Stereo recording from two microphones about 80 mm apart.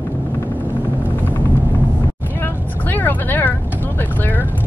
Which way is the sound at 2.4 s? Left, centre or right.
Left.